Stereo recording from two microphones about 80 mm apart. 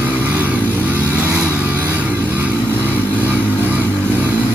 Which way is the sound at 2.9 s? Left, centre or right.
Left.